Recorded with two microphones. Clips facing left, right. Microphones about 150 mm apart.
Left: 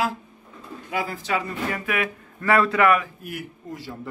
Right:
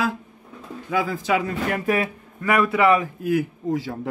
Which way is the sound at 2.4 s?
15° right (ahead or behind).